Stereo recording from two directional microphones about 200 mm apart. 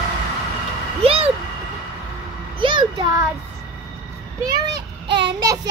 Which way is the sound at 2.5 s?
25° right (ahead or behind).